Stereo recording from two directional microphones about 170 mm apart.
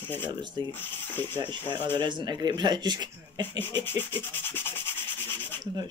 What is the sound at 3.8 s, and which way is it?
Rub, 10° left (ahead or behind).